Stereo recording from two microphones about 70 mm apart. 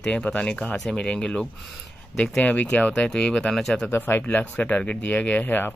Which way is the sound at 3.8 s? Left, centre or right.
Left.